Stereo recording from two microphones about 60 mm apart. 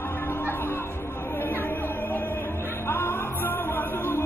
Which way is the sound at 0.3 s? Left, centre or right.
Left.